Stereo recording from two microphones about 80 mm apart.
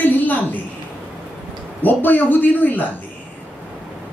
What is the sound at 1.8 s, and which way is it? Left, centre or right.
Speech, left.